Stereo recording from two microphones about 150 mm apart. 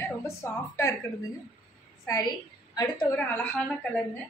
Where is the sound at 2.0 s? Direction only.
25° left (ahead or behind).